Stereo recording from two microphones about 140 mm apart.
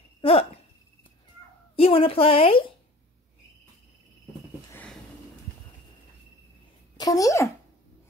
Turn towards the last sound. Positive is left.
turn(degrees=25)  # may be behind; listen again after turning